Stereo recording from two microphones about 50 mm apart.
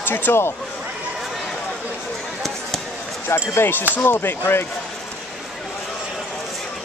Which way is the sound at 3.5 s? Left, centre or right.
Left.